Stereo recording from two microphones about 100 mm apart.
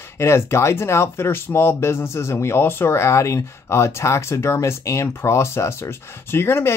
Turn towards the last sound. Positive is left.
turn(degrees=25)  # may be behind; listen again after turning